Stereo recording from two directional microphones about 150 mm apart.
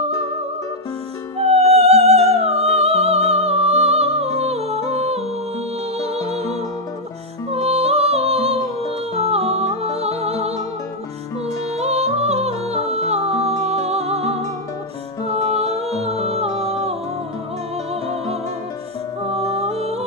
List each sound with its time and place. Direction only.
1.4 s music: 45° right (ahead or behind)
7.5 s music: 45° right (ahead or behind)
11.8 s music: 45° right (ahead or behind)
19.5 s music: 45° right (ahead or behind)